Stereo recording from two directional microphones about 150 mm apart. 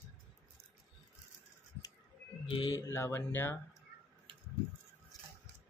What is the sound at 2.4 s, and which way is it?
Speech, 35° left (ahead or behind).